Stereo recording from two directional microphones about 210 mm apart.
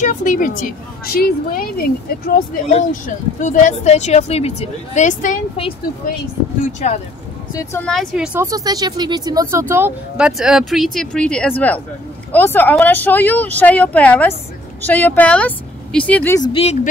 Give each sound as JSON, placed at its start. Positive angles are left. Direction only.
{"t": 0.0, "sound": "a woman's voice", "side_deg": 40}
{"t": 6.6, "sound": "a woman's voice", "side_deg": 30}
{"t": 7.5, "sound": "speech", "side_deg": 10}
{"t": 8.4, "sound": "speech", "side_deg": -15}
{"t": 16.3, "sound": "speech", "side_deg": 25}